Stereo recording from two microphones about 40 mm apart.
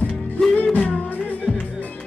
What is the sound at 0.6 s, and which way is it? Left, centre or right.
Music, left.